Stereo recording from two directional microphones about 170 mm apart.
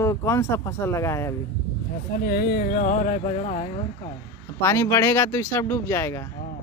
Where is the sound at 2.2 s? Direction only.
70° left (ahead or behind); by 3.8 s 40° left (ahead or behind).